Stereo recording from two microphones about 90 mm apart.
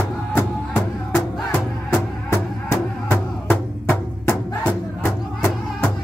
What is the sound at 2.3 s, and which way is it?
Music, 35° left (ahead or behind).